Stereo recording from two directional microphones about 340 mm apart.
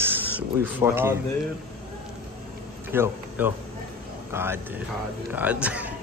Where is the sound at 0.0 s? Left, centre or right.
Centre.